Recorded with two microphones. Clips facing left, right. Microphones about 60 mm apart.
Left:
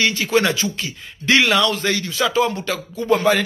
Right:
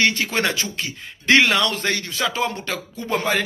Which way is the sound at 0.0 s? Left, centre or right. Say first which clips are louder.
Left 2 dB; right.